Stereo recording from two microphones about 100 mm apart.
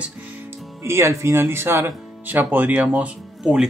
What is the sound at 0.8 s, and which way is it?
Speech, 25° right (ahead or behind).